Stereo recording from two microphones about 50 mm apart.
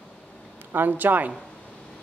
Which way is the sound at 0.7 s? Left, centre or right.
Right.